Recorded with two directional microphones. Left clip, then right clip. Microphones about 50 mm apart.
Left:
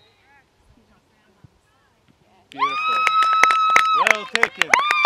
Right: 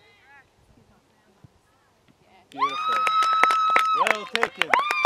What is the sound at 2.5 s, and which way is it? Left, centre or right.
Speech, left.